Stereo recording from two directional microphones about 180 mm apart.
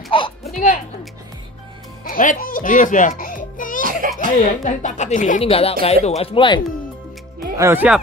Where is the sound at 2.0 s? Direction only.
50° left (ahead or behind).